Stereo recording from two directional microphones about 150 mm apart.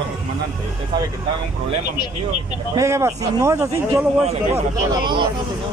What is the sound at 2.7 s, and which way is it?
Speech, 20° right (ahead or behind).